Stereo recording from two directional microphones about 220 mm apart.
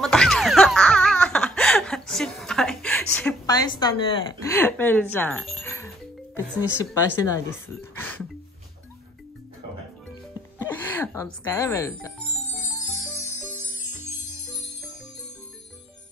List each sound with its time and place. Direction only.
0.0 s baby laughter: centre (ahead or behind)
3.4 s a woman's voice: 20° left (ahead or behind)
4.5 s speech: 10° left (ahead or behind)
10.6 s music: 10° left (ahead or behind)